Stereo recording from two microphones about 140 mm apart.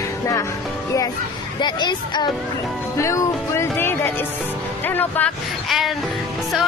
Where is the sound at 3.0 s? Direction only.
20° left (ahead or behind).